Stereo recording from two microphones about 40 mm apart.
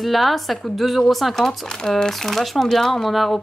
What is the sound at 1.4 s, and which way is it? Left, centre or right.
Speech, centre.